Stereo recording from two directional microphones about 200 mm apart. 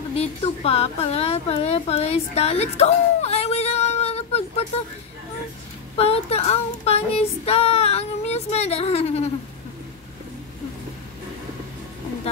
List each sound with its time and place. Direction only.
0.1 s speech: 30° left (ahead or behind)
5.9 s child singing: 30° left (ahead or behind)